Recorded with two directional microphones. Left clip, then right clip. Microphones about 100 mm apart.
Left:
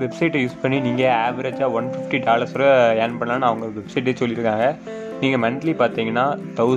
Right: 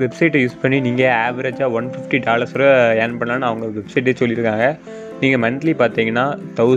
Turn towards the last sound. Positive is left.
turn(degrees=-30)  # may be behind; listen again after turning